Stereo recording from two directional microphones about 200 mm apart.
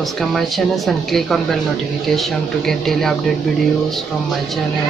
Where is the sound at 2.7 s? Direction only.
Centre (ahead or behind).